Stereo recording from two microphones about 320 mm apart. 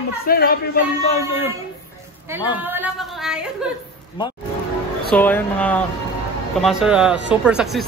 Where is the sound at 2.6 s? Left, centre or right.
Centre.